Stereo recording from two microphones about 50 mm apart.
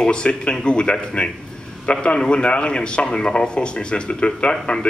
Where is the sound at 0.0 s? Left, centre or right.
Centre.